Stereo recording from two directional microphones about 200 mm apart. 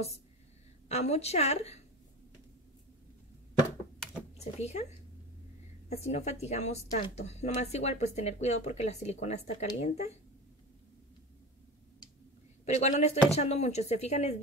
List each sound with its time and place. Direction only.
0.8 s a woman's voice: 35° left (ahead or behind)
4.6 s a woman's voice: 35° left (ahead or behind)
5.9 s a woman's voice: 35° left (ahead or behind)
12.6 s a woman's voice: 35° left (ahead or behind)